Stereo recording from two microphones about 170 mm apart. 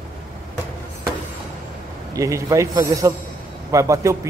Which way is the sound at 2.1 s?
20° right (ahead or behind).